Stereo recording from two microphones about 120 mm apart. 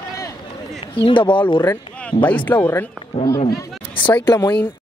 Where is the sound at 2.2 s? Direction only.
15° left (ahead or behind).